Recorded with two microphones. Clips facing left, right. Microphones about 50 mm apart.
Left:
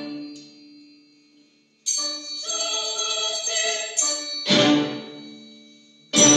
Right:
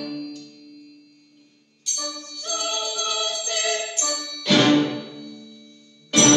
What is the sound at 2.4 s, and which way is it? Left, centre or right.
Music, centre.